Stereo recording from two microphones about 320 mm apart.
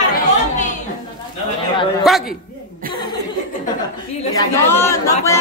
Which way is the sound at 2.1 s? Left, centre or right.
Centre.